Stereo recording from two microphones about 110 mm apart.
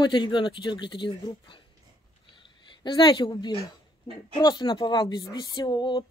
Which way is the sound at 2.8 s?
45° left (ahead or behind).